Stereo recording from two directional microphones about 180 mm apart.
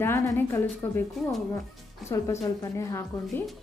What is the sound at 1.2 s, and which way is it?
Speech, centre (ahead or behind).